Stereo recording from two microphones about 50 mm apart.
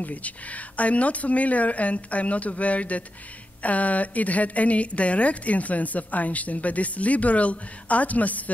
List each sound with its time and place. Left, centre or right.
0.0 s a woman's voice: left